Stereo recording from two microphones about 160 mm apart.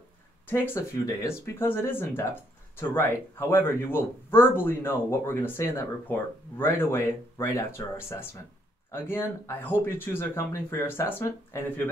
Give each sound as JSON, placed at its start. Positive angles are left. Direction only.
{"t": 0.5, "sound": "speech", "side_deg": 15}